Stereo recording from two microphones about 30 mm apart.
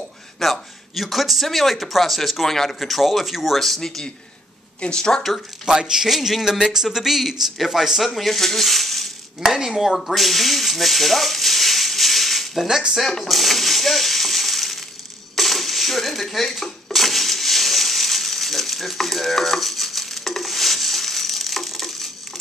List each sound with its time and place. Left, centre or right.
0.4 s speech: centre
2.4 s speech: centre
2.9 s speech: centre
3.5 s speech: centre
4.9 s speech: left
5.7 s speech: right
6.0 s speech: centre
6.7 s speech: centre
9.7 s a sound: centre
15.3 s coin: centre